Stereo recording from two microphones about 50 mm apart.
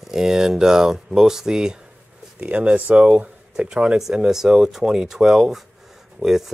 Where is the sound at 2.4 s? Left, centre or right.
Right.